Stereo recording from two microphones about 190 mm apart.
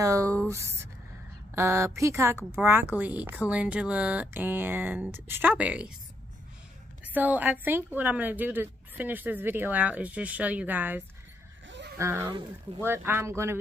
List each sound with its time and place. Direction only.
0.0 s speech: 15° right (ahead or behind)
7.1 s speech: 10° right (ahead or behind)